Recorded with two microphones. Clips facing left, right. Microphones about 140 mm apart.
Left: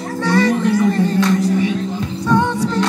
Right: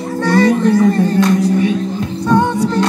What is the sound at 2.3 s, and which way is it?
Music, 40° right (ahead or behind).